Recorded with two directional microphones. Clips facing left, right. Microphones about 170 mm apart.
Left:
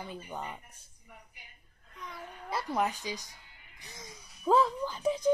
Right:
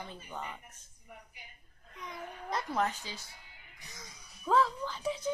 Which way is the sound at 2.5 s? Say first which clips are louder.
Left 1 dB; 10° left (ahead or behind).